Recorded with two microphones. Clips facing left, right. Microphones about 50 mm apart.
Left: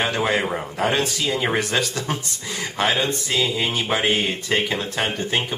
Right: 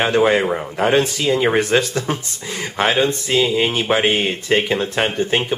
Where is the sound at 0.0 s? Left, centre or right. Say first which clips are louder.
Right 6 dB; centre.